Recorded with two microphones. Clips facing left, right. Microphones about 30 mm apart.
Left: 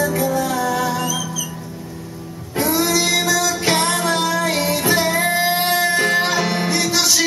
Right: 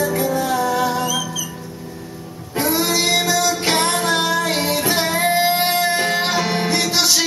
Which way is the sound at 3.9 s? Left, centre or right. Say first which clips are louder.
Even; right.